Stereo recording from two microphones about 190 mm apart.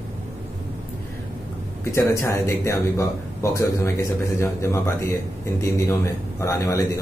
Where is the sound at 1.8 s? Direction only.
15° left (ahead or behind).